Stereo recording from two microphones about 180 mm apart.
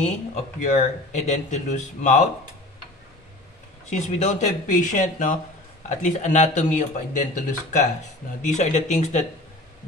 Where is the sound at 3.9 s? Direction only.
40° left (ahead or behind).